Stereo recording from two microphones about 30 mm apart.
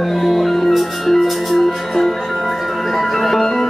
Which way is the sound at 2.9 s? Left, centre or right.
Centre.